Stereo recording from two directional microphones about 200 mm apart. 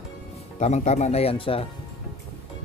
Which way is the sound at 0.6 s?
35° left (ahead or behind).